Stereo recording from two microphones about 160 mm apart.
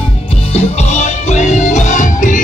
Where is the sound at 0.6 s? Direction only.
45° left (ahead or behind).